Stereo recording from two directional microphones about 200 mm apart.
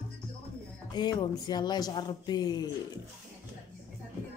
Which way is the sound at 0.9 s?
20° left (ahead or behind).